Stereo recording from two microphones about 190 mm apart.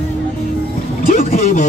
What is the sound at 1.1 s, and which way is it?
Speech, 35° left (ahead or behind).